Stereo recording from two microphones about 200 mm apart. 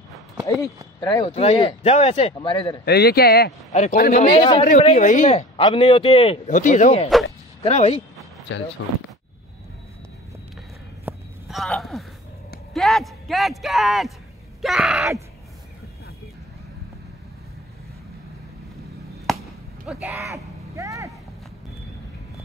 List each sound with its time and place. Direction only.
1.2 s a man's voice: 30° left (ahead or behind)
2.8 s a man's voice: 50° left (ahead or behind)
3.7 s a man's voice: 40° left (ahead or behind)
8.5 s speech: 65° left (ahead or behind)
11.1 s a sound: centre (ahead or behind)
12.7 s a man's voice: centre (ahead or behind)
19.3 s a sound: centre (ahead or behind)
19.9 s speech: 5° right (ahead or behind)
20.7 s vehicle: 15° right (ahead or behind)